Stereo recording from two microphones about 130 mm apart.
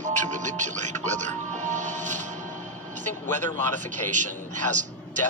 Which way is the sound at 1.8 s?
70° right (ahead or behind).